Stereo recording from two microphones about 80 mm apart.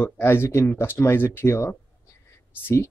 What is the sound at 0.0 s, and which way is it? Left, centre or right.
Speech, left.